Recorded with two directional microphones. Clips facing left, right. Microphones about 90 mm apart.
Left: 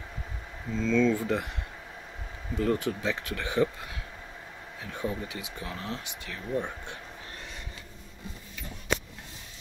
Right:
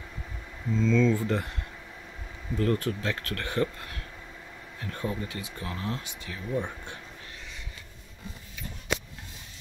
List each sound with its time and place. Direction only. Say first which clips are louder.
0.7 s speech: right 1 dB; 5° left (ahead or behind)
2.5 s speech: even; 5° left (ahead or behind)